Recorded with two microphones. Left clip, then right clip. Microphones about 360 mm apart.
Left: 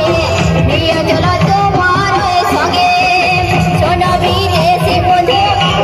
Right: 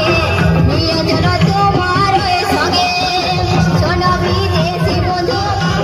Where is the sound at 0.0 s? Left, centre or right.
Centre.